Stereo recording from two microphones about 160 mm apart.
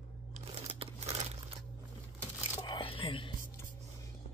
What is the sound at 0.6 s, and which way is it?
Crumpling, 35° right (ahead or behind).